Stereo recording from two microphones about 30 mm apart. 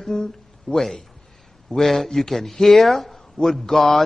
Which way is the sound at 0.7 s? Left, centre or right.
Centre.